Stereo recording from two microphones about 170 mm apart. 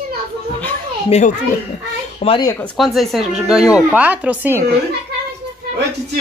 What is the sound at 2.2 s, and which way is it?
Speech, 40° left (ahead or behind).